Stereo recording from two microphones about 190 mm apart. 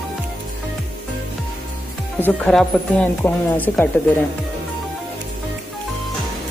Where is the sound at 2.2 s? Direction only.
5° left (ahead or behind).